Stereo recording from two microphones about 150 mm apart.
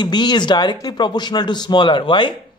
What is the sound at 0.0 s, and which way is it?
Speech, 30° left (ahead or behind).